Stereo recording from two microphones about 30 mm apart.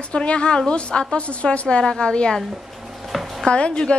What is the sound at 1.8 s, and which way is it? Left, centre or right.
Speech, left.